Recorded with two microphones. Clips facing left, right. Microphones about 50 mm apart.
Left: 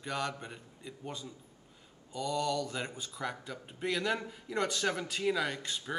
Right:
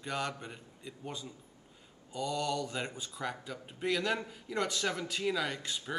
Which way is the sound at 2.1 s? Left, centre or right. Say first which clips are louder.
Left 1 dB; centre.